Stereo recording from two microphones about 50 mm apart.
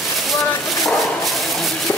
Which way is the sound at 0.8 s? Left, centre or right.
Centre.